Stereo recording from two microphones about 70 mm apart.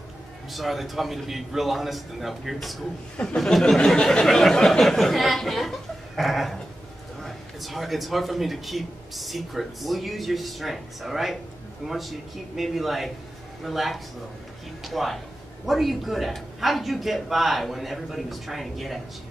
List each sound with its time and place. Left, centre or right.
0.5 s a man's voice: centre